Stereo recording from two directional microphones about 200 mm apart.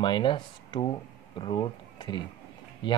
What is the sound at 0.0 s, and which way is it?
Speech, 25° left (ahead or behind).